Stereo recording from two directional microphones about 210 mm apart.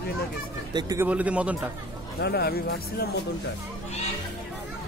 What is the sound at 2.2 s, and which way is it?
Speech, 50° left (ahead or behind).